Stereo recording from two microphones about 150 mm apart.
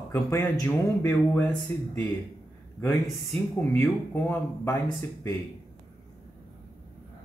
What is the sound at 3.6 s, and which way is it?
Speech, 15° left (ahead or behind).